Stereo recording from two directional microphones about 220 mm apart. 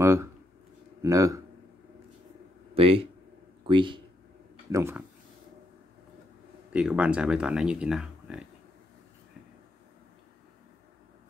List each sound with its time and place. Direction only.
0.0 s a sound: 15° right (ahead or behind)
1.0 s speech: 15° right (ahead or behind)
2.7 s a man's voice: 25° right (ahead or behind)
6.7 s speech: 5° right (ahead or behind)